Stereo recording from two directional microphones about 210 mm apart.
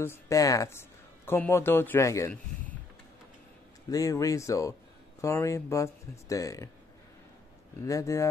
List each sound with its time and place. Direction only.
0.0 s speech: 15° left (ahead or behind)
3.9 s speech: 15° left (ahead or behind)
7.8 s speech: 15° left (ahead or behind)